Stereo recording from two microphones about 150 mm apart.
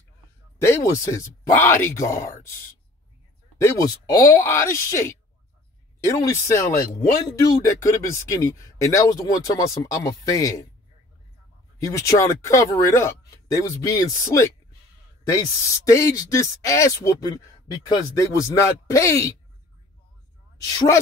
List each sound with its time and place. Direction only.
0.6 s speech: 15° left (ahead or behind)
3.5 s speech: 20° left (ahead or behind)
11.8 s speech: 20° left (ahead or behind)
20.7 s speech: 25° left (ahead or behind)